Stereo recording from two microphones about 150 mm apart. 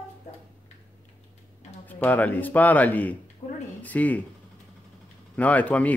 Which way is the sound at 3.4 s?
40° left (ahead or behind).